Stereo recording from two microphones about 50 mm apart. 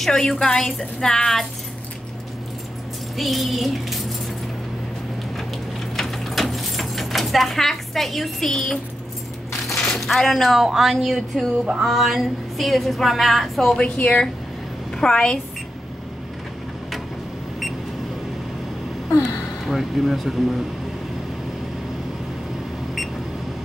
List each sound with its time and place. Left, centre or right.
0.0 s a woman's voice: centre
3.2 s a woman's voice: centre
5.9 s a sound: centre
9.8 s a woman's voice: centre
13.9 s speech: left
15.0 s a woman's voice: centre
19.6 s a woman's voice: centre